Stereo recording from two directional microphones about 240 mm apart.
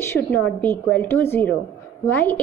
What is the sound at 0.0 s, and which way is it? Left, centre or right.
A woman's voice, centre.